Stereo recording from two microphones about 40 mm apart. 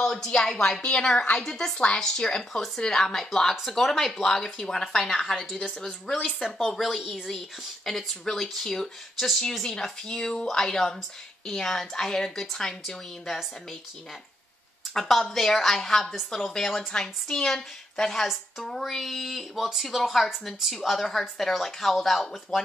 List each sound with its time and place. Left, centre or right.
0.0 s a woman's voice: centre
0.8 s a woman's voice: left
6.0 s a woman's voice: left
7.0 s speech: centre
7.2 s speech: centre
15.0 s speech: centre
18.8 s speech: centre